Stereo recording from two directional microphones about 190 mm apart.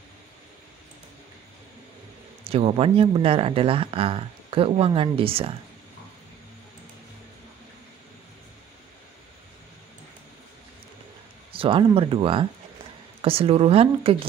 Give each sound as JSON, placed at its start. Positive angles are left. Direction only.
{"t": 2.5, "sound": "speech", "side_deg": -30}
{"t": 11.5, "sound": "speech", "side_deg": -30}